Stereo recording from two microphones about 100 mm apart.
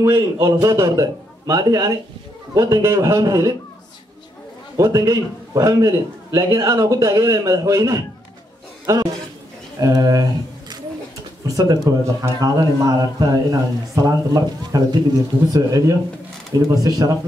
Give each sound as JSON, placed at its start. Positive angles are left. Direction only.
{"t": 0.0, "sound": "a man's voice", "side_deg": -30}
{"t": 4.7, "sound": "a man's voice", "side_deg": -35}
{"t": 11.4, "sound": "a man's voice", "side_deg": -35}